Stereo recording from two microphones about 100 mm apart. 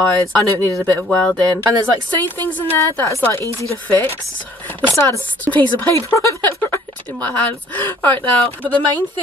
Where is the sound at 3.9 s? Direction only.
20° left (ahead or behind).